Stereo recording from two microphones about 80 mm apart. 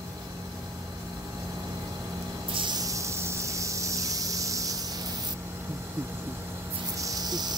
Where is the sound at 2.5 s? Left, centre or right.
Right.